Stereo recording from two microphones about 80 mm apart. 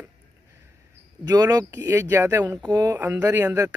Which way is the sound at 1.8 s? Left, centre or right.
Right.